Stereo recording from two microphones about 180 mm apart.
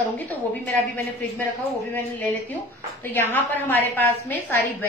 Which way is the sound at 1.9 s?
10° left (ahead or behind).